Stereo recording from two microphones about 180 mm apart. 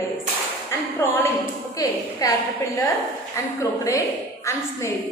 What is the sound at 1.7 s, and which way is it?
A woman's voice, 20° left (ahead or behind).